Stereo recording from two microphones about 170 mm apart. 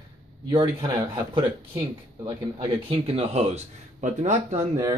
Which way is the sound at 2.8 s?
35° right (ahead or behind).